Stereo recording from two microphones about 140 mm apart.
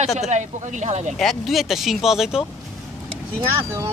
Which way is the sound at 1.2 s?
Centre (ahead or behind).